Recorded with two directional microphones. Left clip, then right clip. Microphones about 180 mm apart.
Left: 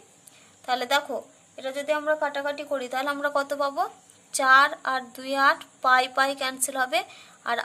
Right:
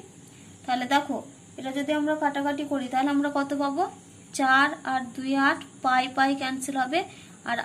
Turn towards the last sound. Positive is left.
turn(degrees=50)  # may be behind; listen again after turning